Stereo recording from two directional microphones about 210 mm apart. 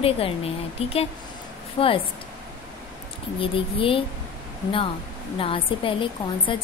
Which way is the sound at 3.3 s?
25° left (ahead or behind).